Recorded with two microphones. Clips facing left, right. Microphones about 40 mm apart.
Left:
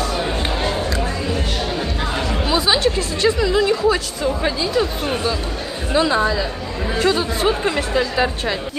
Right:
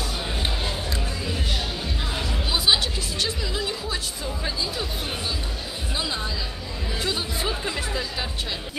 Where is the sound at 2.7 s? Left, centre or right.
Left.